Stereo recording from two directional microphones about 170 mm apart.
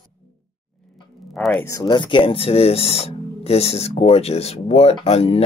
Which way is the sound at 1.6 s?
20° left (ahead or behind).